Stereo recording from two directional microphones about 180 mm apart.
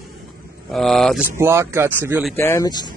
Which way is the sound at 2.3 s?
15° left (ahead or behind).